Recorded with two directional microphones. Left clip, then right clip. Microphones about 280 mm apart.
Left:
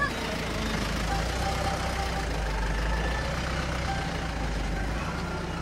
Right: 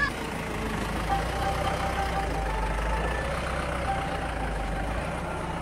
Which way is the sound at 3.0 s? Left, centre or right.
Right.